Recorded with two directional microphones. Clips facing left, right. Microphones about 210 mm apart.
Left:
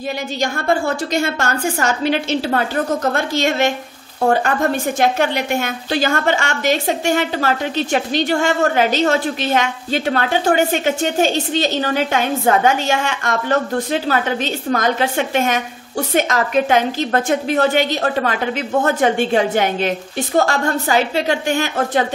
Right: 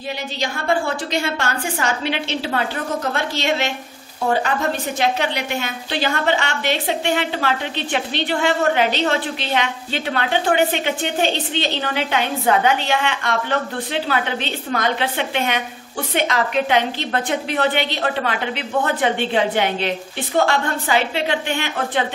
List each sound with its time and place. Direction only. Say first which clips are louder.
0.4 s a woman's voice: left 2 dB; 45° left (ahead or behind)